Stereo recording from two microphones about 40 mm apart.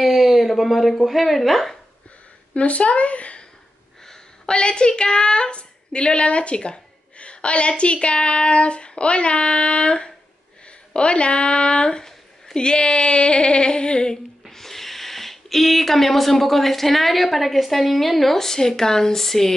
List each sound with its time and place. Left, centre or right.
0.0 s speech: centre
2.5 s a woman's voice: left
4.0 s a sound: centre
4.6 s speech: left
14.5 s speech: centre